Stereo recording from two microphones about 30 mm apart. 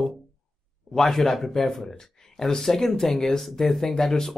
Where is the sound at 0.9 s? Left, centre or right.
Centre.